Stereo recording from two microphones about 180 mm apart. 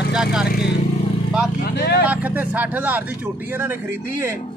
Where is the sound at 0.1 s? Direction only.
5° right (ahead or behind).